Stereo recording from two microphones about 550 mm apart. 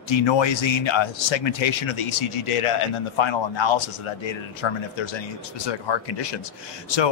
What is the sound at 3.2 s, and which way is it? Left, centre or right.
A man's voice, left.